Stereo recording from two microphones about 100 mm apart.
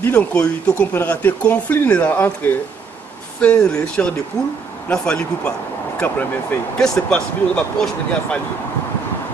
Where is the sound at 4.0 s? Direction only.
15° left (ahead or behind).